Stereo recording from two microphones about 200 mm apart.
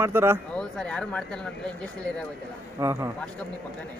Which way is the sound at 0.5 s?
5° left (ahead or behind).